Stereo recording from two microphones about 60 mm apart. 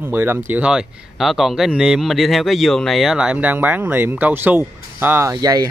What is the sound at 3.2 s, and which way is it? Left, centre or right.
Speech, right.